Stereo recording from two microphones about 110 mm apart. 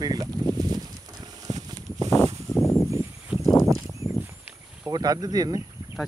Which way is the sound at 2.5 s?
30° left (ahead or behind).